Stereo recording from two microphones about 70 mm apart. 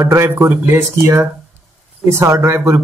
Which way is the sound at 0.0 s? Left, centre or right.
Right.